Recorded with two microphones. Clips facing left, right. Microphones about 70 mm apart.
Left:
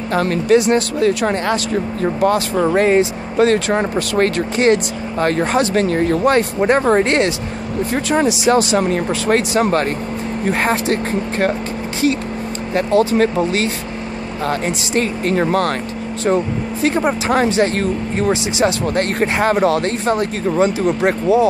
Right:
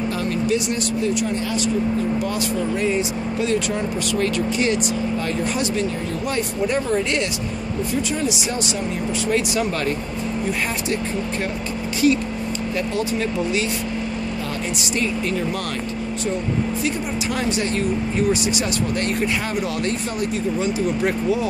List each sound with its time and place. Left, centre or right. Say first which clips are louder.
0.1 s speech: left 11 dB; left
7.9 s speech: left 8 dB; left
9.5 s speech: left 6 dB; left
12.7 s speech: left 11 dB; left
15.0 s speech: left 6 dB; left
16.8 s speech: left 7 dB; left
18.9 s speech: left 5 dB; left
20.8 s speech: left 5 dB; left